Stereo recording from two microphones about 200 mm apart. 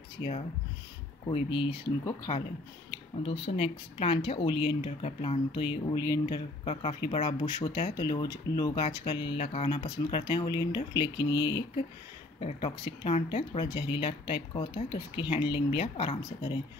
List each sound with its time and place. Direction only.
1.3 s speech: 25° left (ahead or behind)
3.2 s speech: 30° left (ahead or behind)